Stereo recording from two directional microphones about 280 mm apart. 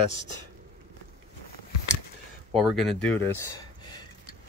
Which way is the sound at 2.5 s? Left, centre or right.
Centre.